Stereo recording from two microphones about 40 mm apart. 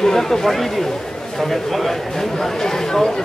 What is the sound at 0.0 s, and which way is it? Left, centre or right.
Speech, centre.